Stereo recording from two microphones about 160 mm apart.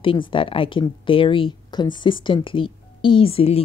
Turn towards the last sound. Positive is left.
turn(degrees=40)  # may be behind; listen again after turning